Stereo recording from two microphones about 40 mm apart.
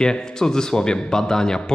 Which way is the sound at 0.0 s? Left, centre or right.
Centre.